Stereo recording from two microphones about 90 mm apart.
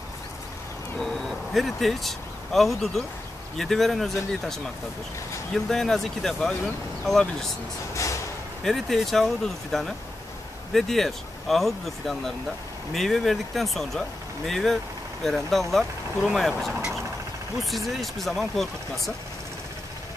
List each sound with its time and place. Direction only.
0.9 s vehicle: 5° left (ahead or behind)
3.5 s speech: 5° left (ahead or behind)
7.9 s a sound: 35° left (ahead or behind)
8.6 s speech: centre (ahead or behind)
16.7 s vehicle: 10° right (ahead or behind)
17.6 s speech: centre (ahead or behind)